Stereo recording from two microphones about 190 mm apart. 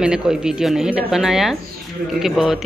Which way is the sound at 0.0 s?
5° right (ahead or behind).